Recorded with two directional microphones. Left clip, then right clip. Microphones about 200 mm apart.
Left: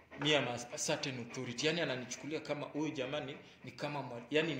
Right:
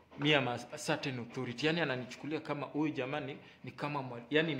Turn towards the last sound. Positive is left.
turn(degrees=-40)  # may be behind; listen again after turning